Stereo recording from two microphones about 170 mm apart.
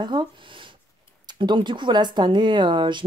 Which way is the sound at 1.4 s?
30° right (ahead or behind).